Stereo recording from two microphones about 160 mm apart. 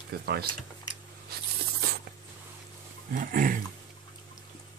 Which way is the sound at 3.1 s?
60° right (ahead or behind).